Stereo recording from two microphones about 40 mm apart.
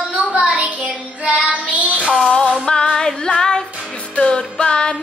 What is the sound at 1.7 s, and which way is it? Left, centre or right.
Child singing, right.